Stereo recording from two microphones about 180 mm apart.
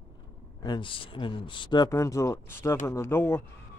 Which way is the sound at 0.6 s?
25° left (ahead or behind).